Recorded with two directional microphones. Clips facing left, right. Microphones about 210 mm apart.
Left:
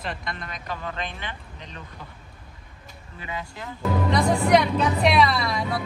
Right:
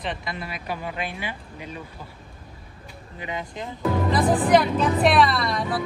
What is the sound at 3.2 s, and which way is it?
Speech, 20° right (ahead or behind).